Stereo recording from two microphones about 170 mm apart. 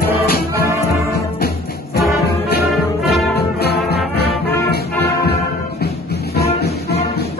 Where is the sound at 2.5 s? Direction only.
70° left (ahead or behind).